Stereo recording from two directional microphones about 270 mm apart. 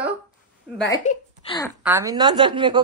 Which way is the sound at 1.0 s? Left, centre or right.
Left.